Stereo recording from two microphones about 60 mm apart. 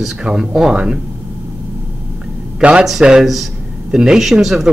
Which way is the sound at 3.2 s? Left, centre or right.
Centre.